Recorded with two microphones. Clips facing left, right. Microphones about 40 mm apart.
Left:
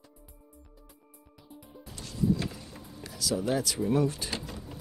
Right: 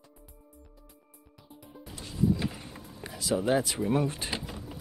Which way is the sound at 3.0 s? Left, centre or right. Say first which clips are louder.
Right 2 dB; right.